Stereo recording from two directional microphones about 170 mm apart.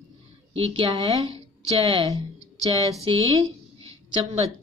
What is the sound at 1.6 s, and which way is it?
Speech, 35° right (ahead or behind).